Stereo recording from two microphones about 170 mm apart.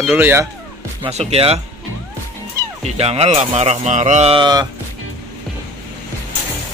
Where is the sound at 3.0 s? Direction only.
40° right (ahead or behind).